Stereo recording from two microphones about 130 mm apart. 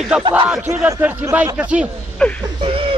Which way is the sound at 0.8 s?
25° right (ahead or behind).